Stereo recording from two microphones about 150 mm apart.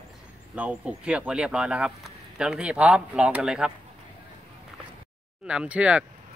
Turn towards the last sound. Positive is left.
turn(degrees=-10)  # may be behind; listen again after turning